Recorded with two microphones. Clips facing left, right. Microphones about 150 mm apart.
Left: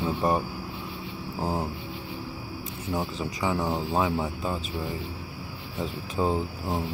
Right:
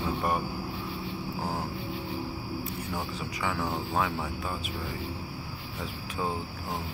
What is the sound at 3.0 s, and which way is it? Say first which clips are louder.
Speech: left 4 dB; 20° left (ahead or behind).